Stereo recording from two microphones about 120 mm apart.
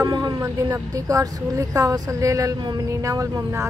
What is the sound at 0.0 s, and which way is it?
A woman's voice, 30° right (ahead or behind).